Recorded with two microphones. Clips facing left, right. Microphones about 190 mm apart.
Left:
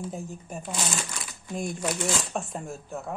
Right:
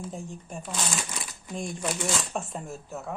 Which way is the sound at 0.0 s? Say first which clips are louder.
Left 2 dB; 5° left (ahead or behind).